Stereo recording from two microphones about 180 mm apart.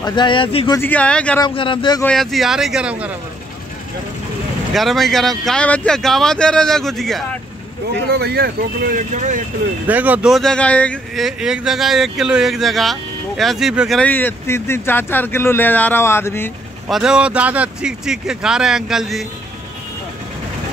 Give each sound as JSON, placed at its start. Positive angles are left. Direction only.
{"t": 0.0, "sound": "speech", "side_deg": 25}
{"t": 0.7, "sound": "speech", "side_deg": 10}
{"t": 1.4, "sound": "speech", "side_deg": 30}
{"t": 2.0, "sound": "speech", "side_deg": 0}
{"t": 4.7, "sound": "speech", "side_deg": 0}
{"t": 8.1, "sound": "speech", "side_deg": -65}
{"t": 9.8, "sound": "speech", "side_deg": -10}
{"t": 16.8, "sound": "speech", "side_deg": -5}